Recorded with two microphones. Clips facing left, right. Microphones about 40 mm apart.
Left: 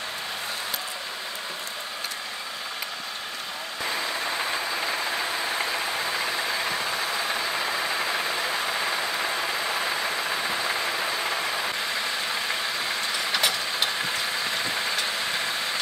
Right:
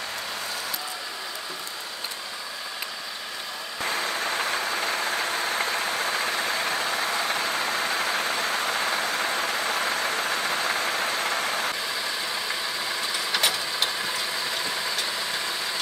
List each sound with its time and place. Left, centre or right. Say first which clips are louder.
7.7 s vehicle: right 1 dB; right
11.9 s vehicle: left 1 dB; centre
13.2 s engine: even; centre
14.8 s vehicle: left 1 dB; centre